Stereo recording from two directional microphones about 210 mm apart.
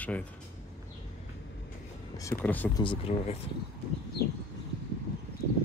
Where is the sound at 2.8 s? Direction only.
25° left (ahead or behind).